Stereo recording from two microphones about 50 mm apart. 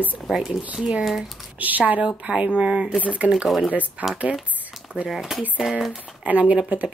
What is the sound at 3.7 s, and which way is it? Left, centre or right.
Speech, right.